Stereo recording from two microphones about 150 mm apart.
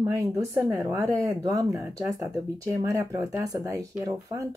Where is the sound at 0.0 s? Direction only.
20° right (ahead or behind).